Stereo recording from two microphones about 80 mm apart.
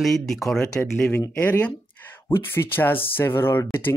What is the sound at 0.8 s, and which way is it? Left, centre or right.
Speech, centre.